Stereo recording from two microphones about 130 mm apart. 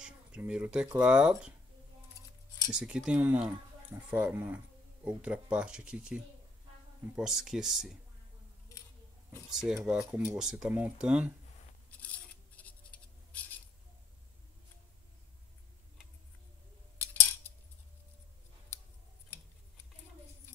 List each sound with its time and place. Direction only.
0.0 s speech: 5° right (ahead or behind)
2.7 s speech: 5° right (ahead or behind)
9.5 s speech: 5° right (ahead or behind)
12.6 s writing: 10° left (ahead or behind)
17.0 s cutlery: 15° left (ahead or behind)